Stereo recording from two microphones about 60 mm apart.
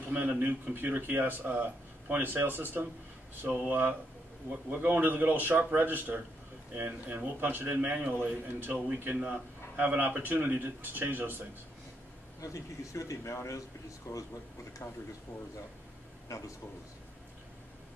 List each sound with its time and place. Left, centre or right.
0.1 s speech: right
8.5 s speech: right
12.4 s a man's voice: left
16.3 s speech: left